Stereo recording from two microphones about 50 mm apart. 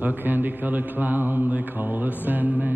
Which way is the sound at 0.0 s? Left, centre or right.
Right.